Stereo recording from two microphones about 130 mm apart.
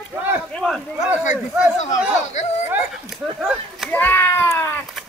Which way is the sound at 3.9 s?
15° left (ahead or behind).